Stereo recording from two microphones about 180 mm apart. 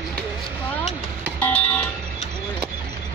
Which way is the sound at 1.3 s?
10° left (ahead or behind).